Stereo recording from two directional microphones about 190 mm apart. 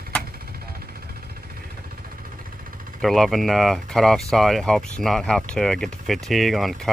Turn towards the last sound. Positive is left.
turn(degrees=0)  # may be behind; listen again after turning